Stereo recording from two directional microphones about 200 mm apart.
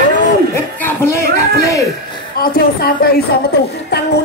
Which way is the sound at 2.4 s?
45° left (ahead or behind).